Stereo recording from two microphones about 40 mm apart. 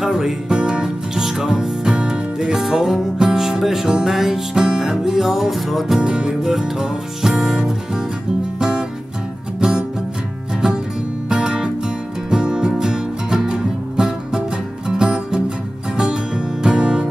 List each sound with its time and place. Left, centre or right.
0.0 s music: centre
5.9 s music: centre
11.2 s music: centre